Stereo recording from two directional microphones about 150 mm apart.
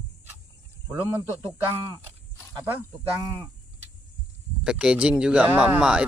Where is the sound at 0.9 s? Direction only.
15° right (ahead or behind).